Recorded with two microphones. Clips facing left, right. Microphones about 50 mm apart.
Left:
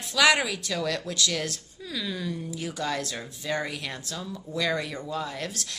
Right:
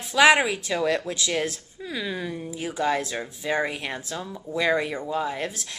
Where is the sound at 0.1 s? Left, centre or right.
Right.